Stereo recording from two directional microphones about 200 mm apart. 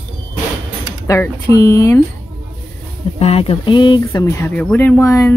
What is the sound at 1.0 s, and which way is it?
Speech, 15° left (ahead or behind).